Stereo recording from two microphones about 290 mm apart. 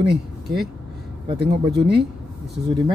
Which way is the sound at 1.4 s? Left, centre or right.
Right.